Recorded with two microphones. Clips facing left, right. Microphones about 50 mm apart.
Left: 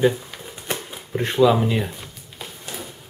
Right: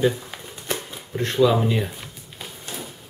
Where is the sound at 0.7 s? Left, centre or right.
Centre.